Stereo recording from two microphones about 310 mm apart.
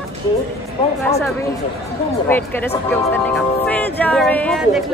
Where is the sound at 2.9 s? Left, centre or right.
Centre.